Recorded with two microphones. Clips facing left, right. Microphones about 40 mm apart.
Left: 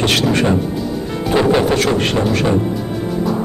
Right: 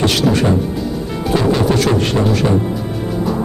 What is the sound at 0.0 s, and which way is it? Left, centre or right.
Speech, left.